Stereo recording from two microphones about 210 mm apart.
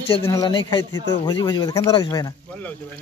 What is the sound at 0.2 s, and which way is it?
A man's voice, 15° left (ahead or behind).